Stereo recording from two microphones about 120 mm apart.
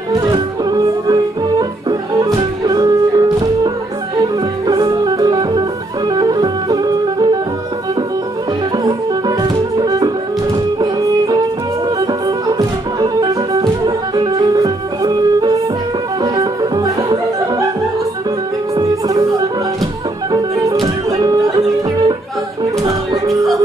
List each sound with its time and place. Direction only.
0.1 s music: 35° right (ahead or behind)
9.4 s music: 35° right (ahead or behind)
12.4 s music: 30° right (ahead or behind)
18.8 s music: 30° right (ahead or behind)
20.2 s music: 30° right (ahead or behind)